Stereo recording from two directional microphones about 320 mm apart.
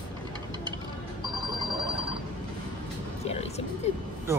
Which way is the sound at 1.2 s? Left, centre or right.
Centre.